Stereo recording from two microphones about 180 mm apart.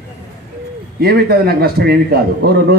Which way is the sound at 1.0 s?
60° right (ahead or behind).